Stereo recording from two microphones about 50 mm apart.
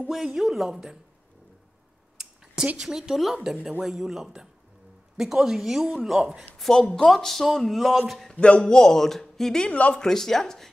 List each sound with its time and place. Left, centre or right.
0.1 s a woman's voice: centre
2.8 s a woman's voice: centre
6.6 s speech: centre
8.4 s a man's voice: left